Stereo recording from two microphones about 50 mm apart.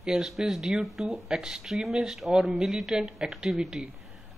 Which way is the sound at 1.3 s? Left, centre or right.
Centre.